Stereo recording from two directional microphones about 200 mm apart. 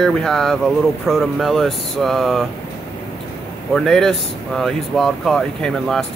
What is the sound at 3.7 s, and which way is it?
Speech, centre (ahead or behind).